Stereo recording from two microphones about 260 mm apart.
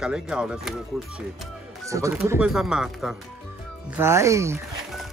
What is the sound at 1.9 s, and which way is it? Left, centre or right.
Speech, centre.